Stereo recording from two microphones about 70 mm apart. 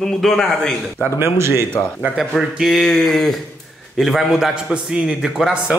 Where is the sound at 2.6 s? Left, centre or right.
Centre.